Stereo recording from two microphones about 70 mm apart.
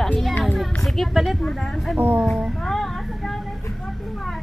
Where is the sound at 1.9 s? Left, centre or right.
Right.